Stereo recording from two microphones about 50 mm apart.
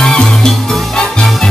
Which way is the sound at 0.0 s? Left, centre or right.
Centre.